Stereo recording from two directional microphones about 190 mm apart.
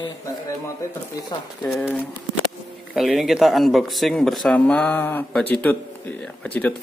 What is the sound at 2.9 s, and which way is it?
Speech, centre (ahead or behind).